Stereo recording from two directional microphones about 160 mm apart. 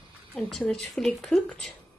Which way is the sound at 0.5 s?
Centre (ahead or behind).